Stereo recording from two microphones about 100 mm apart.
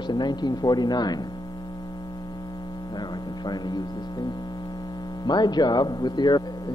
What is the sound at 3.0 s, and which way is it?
Speech, 45° left (ahead or behind).